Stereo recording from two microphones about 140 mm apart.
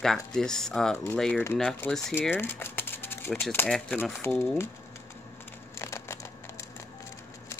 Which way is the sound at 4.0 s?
15° left (ahead or behind).